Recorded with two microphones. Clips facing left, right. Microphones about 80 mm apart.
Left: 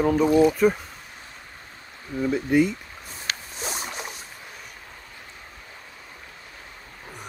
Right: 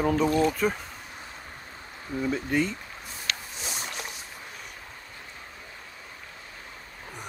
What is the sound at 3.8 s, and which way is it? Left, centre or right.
Boat, centre.